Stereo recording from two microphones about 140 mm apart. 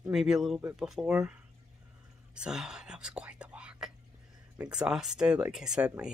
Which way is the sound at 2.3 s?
5° right (ahead or behind).